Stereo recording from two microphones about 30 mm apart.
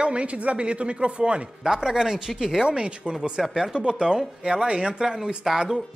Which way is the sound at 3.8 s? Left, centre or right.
Right.